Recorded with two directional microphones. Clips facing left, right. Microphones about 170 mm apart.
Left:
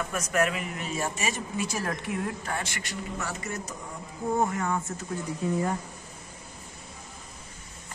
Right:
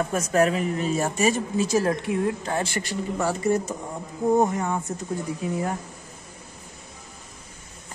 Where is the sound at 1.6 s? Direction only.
25° right (ahead or behind).